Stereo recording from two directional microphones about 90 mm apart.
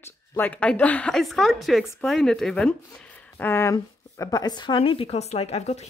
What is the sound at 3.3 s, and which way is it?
A woman's voice, 25° left (ahead or behind).